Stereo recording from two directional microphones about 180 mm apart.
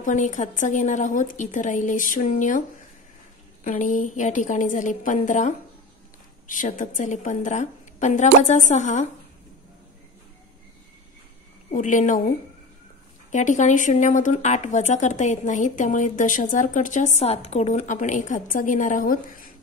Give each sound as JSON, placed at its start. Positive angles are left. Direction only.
{"t": 0.0, "sound": "speech", "side_deg": 45}
{"t": 3.6, "sound": "speech", "side_deg": 45}
{"t": 11.7, "sound": "speech", "side_deg": 45}